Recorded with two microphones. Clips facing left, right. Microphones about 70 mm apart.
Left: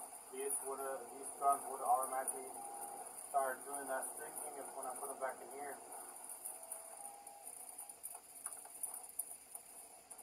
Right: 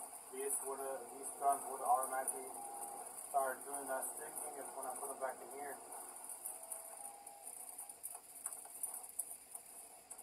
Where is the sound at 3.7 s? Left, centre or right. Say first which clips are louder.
Even; left.